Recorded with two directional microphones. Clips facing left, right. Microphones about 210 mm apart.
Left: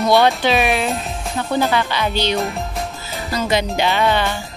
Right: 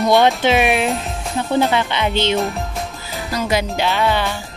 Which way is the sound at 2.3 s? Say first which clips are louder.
Right 1 dB; centre (ahead or behind).